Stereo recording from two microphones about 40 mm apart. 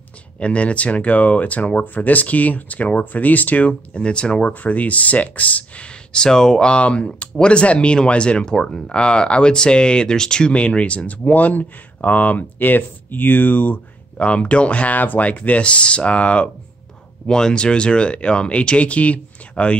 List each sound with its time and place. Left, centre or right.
0.4 s speech: left
3.9 s speech: left
14.1 s speech: left
17.3 s speech: centre